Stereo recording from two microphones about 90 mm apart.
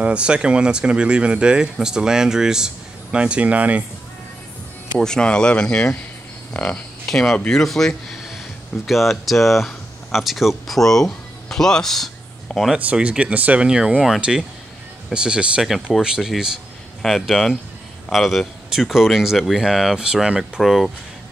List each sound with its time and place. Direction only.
0.0 s speech: 10° right (ahead or behind)
4.9 s speech: 10° left (ahead or behind)
7.1 s speech: 5° left (ahead or behind)
12.7 s speech: 10° right (ahead or behind)